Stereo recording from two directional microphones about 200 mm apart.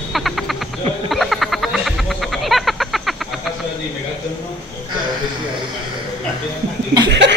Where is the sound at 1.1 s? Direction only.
Centre (ahead or behind).